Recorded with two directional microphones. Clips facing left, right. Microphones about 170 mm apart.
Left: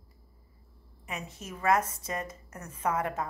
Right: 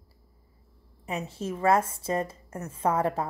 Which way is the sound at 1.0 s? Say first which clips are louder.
Right 8 dB; 30° right (ahead or behind).